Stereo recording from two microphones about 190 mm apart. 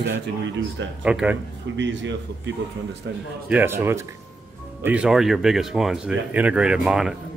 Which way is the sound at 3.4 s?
10° right (ahead or behind).